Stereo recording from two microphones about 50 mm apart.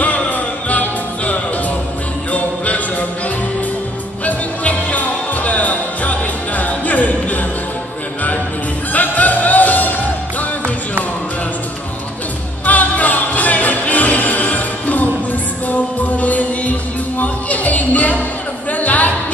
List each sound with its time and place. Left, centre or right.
0.0 s music: left
4.2 s music: left
8.9 s music: left
12.6 s music: left
17.2 s a sound: left